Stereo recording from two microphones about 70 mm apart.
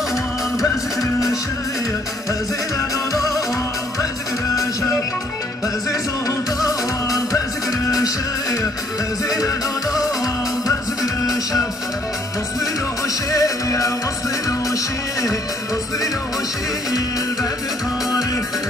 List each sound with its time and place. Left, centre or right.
3.1 s music: left
5.9 s music: left
11.0 s music: left
13.3 s music: left